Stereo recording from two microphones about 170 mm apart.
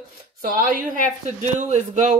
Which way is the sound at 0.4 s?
55° right (ahead or behind).